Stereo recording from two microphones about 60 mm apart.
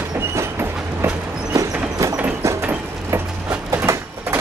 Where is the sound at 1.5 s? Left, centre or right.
Right.